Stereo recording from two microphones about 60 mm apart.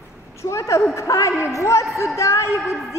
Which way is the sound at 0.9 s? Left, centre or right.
Left.